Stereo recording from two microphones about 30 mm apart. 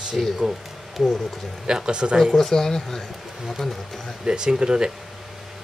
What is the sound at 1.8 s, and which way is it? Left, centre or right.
Speech, right.